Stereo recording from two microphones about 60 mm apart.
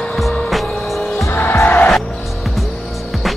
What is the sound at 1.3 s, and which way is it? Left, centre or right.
Music, left.